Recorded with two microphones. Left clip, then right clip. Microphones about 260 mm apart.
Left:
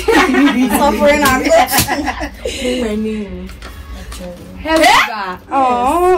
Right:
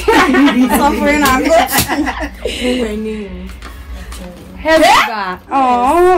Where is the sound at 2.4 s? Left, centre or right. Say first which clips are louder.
Right 2 dB; right.